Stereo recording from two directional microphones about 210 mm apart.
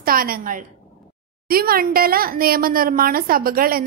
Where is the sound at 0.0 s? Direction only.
45° right (ahead or behind).